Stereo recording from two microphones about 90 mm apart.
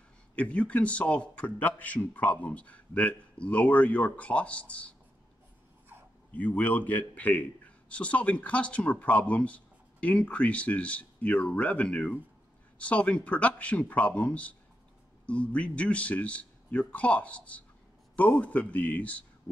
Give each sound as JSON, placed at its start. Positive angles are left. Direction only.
{"t": 0.4, "sound": "speech", "side_deg": 15}
{"t": 6.3, "sound": "speech", "side_deg": 20}